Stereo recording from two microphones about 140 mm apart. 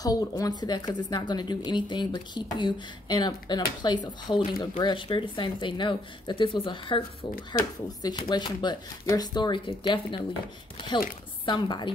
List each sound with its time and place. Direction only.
0.0 s speech: 25° left (ahead or behind)
11.4 s speech: 35° left (ahead or behind)